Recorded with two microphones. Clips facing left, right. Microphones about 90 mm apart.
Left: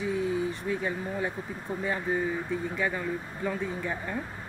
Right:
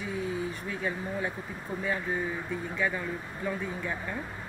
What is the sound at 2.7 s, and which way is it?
Speech, 30° left (ahead or behind).